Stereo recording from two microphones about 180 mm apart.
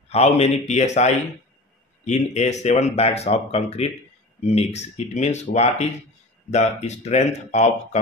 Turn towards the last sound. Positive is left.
turn(degrees=40)  # may be behind; listen again after turning